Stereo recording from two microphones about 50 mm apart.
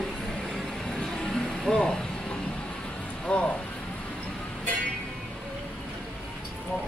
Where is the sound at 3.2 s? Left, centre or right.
Left.